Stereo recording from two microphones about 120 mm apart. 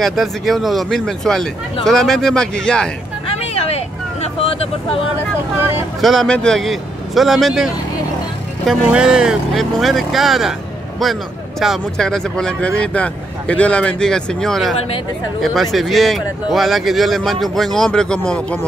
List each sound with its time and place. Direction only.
0.0 s speech: centre (ahead or behind)
3.3 s speech: 55° left (ahead or behind)
5.9 s speech: centre (ahead or behind)
11.6 s speech: centre (ahead or behind)